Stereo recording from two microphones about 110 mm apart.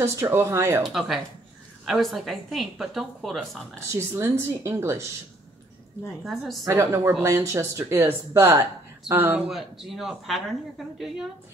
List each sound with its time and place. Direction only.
0.0 s speech: 25° right (ahead or behind)
0.8 s speech: centre (ahead or behind)
4.1 s speech: 20° right (ahead or behind)
6.2 s speech: centre (ahead or behind)
6.6 s speech: 25° right (ahead or behind)
9.1 s speech: 15° right (ahead or behind)
9.5 s speech: centre (ahead or behind)